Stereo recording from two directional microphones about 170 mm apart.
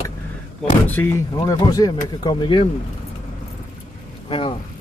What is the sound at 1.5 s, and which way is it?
Speech, 20° left (ahead or behind).